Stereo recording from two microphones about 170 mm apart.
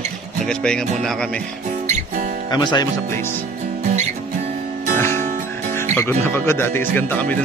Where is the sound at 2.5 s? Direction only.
25° left (ahead or behind).